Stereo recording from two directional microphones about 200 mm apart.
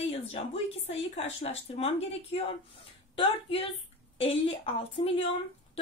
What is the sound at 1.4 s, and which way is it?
A woman's voice, 30° left (ahead or behind).